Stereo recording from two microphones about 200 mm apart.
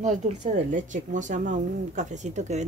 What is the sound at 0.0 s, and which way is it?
A woman's voice, 35° right (ahead or behind).